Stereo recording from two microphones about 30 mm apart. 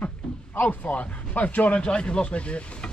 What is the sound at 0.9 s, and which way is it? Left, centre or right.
Speech, left.